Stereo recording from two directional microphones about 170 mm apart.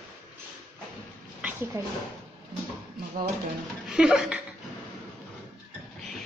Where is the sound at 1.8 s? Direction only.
15° right (ahead or behind).